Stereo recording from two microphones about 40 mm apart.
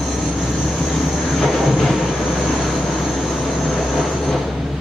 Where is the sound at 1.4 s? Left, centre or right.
Centre.